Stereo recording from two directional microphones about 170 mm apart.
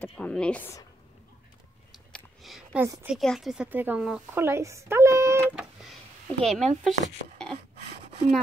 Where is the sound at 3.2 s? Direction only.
Centre (ahead or behind); by 5.5 s 15° right (ahead or behind).